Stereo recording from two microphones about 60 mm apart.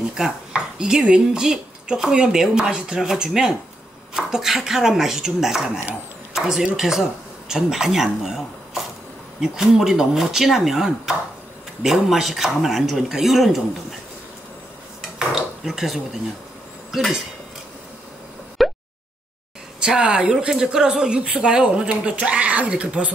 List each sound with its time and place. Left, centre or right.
0.1 s speech: centre
15.0 s dishes: centre
18.6 s a sound: centre
19.8 s speech: centre